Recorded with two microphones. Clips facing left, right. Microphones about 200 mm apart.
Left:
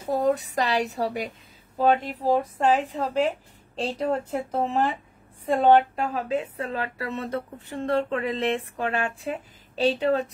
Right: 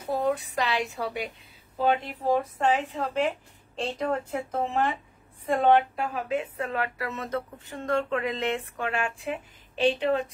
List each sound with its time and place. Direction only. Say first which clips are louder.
0.1 s a woman's voice: left 3 dB; 40° left (ahead or behind)